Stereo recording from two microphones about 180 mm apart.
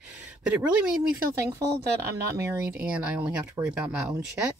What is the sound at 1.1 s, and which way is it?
Speech, 15° right (ahead or behind).